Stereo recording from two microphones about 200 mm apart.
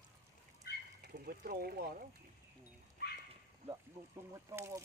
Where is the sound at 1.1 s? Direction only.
45° right (ahead or behind).